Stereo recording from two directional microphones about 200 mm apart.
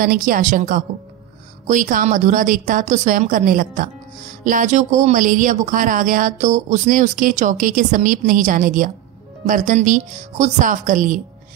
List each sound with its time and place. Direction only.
0.0 s a woman's voice: 45° right (ahead or behind)